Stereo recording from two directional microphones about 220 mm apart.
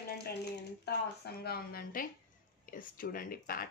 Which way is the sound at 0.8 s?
45° left (ahead or behind).